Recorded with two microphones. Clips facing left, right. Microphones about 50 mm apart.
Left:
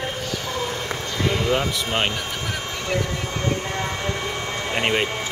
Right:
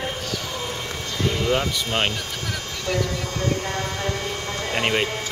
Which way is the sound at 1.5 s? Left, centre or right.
Centre.